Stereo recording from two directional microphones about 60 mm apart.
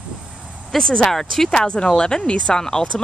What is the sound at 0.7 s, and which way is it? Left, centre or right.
Speech, centre.